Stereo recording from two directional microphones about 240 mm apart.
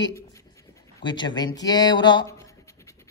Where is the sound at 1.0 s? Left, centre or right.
Centre.